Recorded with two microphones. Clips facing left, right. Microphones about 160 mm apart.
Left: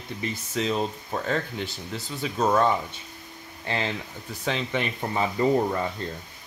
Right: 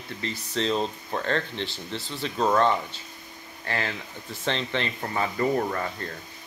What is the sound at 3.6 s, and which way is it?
Speech, 20° left (ahead or behind).